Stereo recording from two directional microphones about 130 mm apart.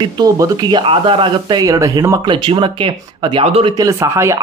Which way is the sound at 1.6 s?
25° right (ahead or behind).